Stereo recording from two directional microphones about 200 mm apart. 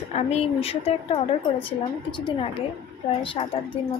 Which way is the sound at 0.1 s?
30° left (ahead or behind).